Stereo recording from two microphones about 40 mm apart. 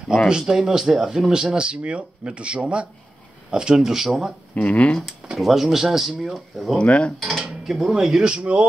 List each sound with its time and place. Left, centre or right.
0.3 s speech: centre
4.6 s speech: left
5.4 s speech: centre
6.8 s dishes: left
7.4 s speech: centre
8.2 s speech: right